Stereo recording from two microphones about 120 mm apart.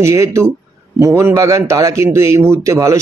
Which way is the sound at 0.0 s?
25° right (ahead or behind).